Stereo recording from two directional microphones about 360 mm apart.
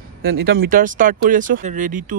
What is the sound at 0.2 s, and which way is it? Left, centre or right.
A man's voice, right.